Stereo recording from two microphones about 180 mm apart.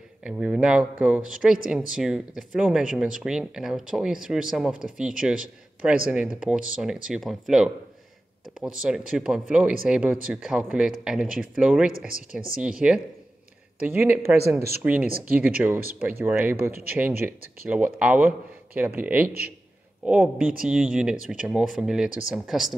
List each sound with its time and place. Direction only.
0.2 s speech: 5° right (ahead or behind)
12.3 s speech: 55° right (ahead or behind)
12.6 s speech: 5° right (ahead or behind)